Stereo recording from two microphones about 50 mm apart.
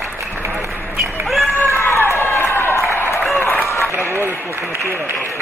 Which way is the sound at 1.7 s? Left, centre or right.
Left.